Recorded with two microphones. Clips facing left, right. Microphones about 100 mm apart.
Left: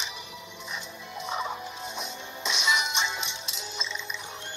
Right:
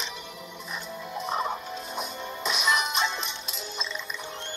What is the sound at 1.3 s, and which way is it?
Fowl, 5° right (ahead or behind).